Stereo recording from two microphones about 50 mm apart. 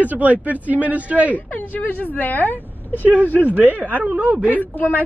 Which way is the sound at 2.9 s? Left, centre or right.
Right.